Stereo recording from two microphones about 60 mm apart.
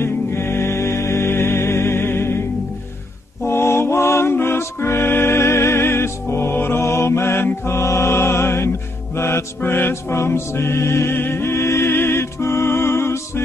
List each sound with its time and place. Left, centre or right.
0.0 s music: left
3.4 s music: left